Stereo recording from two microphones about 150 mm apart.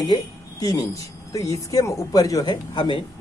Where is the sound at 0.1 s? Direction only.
25° left (ahead or behind).